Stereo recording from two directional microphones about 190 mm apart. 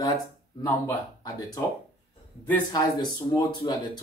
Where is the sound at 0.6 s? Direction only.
20° left (ahead or behind).